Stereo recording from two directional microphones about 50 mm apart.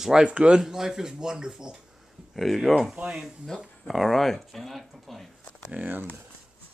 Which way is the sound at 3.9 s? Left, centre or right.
Centre.